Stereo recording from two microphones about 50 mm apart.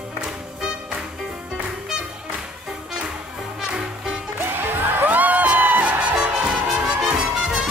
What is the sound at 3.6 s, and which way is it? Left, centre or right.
Music, centre.